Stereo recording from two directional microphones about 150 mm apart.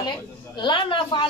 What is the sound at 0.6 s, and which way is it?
Speech, 35° left (ahead or behind).